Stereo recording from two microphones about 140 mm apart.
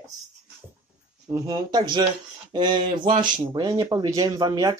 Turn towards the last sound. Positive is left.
turn(degrees=-30)  # may be behind; listen again after turning